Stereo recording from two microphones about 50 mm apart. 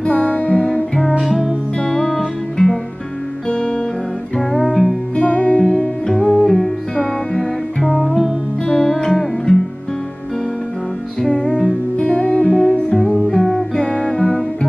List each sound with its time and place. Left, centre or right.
0.0 s music: left
1.2 s music: centre
4.4 s music: centre
5.1 s music: left
5.7 s music: centre
11.4 s music: centre
12.1 s music: left
12.4 s music: centre